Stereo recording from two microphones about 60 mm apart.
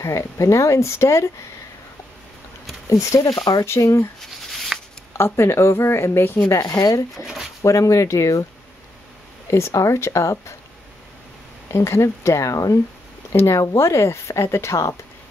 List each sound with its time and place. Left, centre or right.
0.0 s speech: left
2.9 s speech: left
3.8 s speech: left
4.2 s a sound: centre
5.1 s speech: left
6.6 s speech: left
7.2 s speech: left
7.6 s speech: left
9.5 s speech: left
11.7 s speech: left
13.3 s speech: left